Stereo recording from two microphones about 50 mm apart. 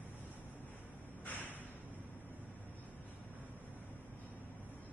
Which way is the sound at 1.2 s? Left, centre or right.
Left.